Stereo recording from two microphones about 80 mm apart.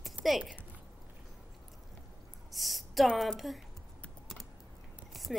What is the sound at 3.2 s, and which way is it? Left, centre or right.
Speech, centre.